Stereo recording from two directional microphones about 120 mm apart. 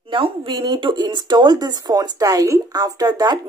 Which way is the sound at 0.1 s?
40° right (ahead or behind).